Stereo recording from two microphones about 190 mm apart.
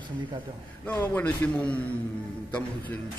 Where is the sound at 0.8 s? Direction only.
10° left (ahead or behind).